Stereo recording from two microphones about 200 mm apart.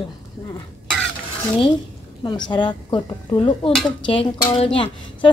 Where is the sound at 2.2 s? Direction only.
20° left (ahead or behind).